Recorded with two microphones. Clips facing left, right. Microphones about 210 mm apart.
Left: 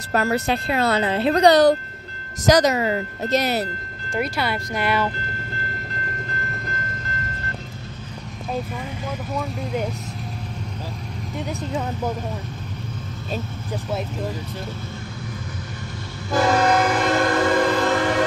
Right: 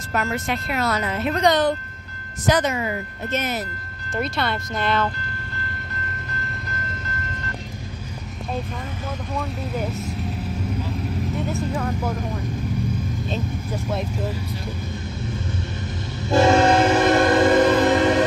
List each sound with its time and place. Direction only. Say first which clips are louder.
0.1 s speech: left 4 dB; 35° left (ahead or behind)
2.7 s speech: left 4 dB; 70° left (ahead or behind)
3.3 s speech: left 4 dB; 35° left (ahead or behind)
4.1 s speech: left 1 dB; 10° left (ahead or behind)
11.5 s speech: right 2 dB; 15° left (ahead or behind)
13.3 s speech: left 2 dB; 5° left (ahead or behind)
16.3 s train: right 3 dB; 25° right (ahead or behind)